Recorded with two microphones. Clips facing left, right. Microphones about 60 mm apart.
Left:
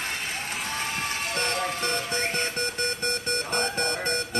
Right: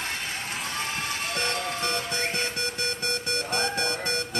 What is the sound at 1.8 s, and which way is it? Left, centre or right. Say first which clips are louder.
Music: left 1 dB; left.